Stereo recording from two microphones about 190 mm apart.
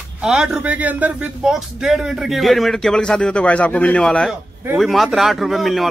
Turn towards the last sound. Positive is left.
turn(degrees=0)  # may be behind; listen again after turning